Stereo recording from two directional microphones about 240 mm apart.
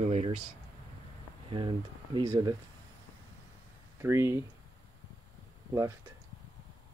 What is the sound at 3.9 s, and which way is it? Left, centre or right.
Speech, centre.